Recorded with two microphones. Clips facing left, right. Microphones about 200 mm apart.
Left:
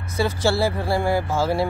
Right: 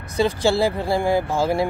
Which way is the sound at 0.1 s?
15° right (ahead or behind).